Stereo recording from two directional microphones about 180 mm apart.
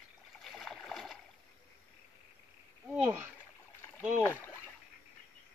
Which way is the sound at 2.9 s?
10° right (ahead or behind).